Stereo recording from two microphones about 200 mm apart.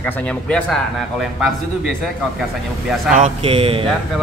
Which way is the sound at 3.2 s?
30° right (ahead or behind).